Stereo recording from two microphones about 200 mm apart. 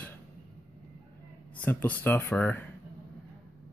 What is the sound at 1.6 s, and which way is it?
Speech, 10° left (ahead or behind).